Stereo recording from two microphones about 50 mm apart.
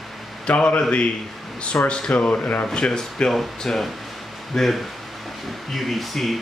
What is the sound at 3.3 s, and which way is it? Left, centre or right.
Speech, centre.